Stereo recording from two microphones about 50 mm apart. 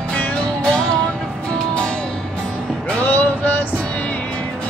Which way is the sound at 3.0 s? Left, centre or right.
Left.